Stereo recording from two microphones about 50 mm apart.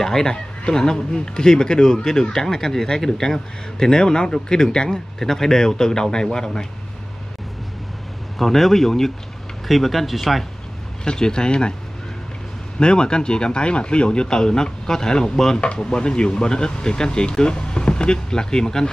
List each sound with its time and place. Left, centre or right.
0.0 s speech: centre
8.4 s speech: centre
11.1 s speech: centre
12.7 s speech: centre